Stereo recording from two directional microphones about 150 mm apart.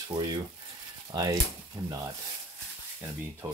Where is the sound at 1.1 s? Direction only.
25° right (ahead or behind).